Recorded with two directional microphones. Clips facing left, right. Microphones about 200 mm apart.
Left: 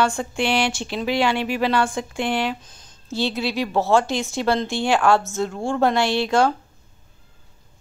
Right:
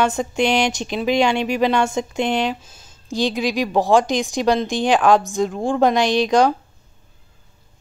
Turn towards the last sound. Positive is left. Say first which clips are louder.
# right 3 dB
turn(degrees=-15)  # may be behind; listen again after turning